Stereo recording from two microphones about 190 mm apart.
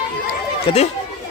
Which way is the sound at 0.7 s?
30° left (ahead or behind).